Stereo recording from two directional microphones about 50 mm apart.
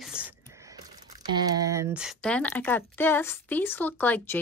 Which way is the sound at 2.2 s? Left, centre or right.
Left.